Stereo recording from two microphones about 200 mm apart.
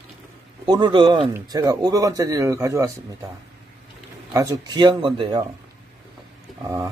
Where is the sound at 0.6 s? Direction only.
20° right (ahead or behind).